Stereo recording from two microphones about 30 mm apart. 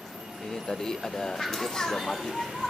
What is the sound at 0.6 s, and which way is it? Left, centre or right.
Speech, centre.